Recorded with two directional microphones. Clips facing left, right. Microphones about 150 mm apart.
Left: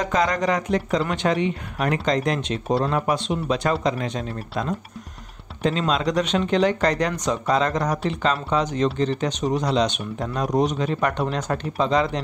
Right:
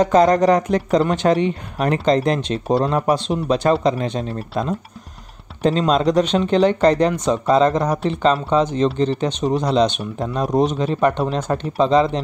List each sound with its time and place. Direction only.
0.0 s speech: 35° right (ahead or behind)